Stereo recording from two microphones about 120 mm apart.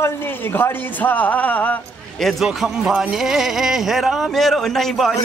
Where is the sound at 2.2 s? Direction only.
5° right (ahead or behind).